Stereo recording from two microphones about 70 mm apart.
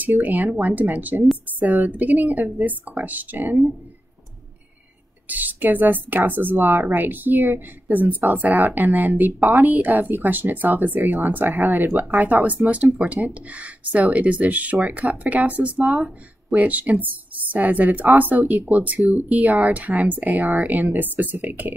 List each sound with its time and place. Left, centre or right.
0.2 s a woman's voice: right
5.3 s a woman's voice: right